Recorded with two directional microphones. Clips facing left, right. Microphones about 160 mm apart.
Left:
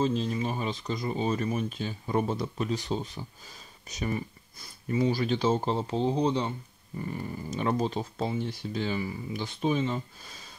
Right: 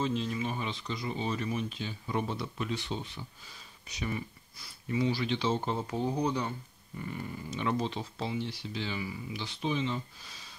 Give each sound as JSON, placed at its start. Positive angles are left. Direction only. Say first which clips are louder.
{"t": 0.0, "sound": "speech", "louder": "left 4 dB", "side_deg": 35}
{"t": 7.0, "sound": "speech", "louder": "left 4 dB", "side_deg": 35}